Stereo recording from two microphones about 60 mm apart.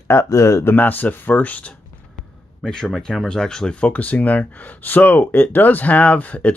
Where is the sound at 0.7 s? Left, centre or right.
Left.